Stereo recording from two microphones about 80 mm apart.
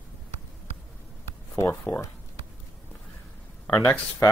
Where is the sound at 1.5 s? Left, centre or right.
Left.